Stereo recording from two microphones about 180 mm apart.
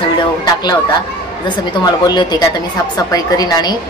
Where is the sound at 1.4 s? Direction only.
25° left (ahead or behind).